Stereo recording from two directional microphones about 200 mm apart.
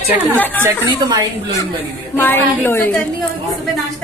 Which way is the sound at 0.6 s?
20° right (ahead or behind).